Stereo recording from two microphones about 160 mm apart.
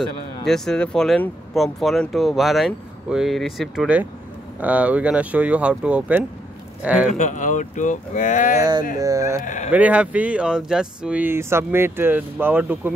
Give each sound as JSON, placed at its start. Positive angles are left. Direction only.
{"t": 0.0, "sound": "speech", "side_deg": 5}
{"t": 7.1, "sound": "speech", "side_deg": 50}
{"t": 8.5, "sound": "speech", "side_deg": -25}
{"t": 9.4, "sound": "speech", "side_deg": 50}
{"t": 9.7, "sound": "speech", "side_deg": -10}